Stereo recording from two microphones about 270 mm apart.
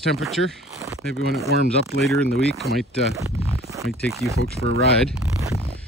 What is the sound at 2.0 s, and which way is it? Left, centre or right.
Speech, centre.